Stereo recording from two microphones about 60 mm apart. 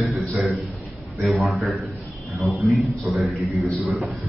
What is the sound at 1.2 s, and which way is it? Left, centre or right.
A man's voice, centre.